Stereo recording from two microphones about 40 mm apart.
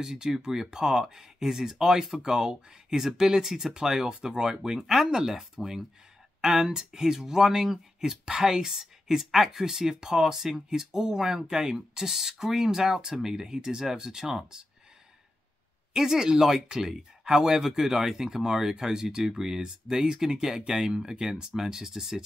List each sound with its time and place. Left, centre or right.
0.0 s speech: centre
15.9 s speech: centre